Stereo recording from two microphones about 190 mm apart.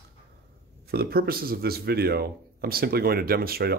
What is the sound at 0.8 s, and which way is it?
Speech, 55° right (ahead or behind).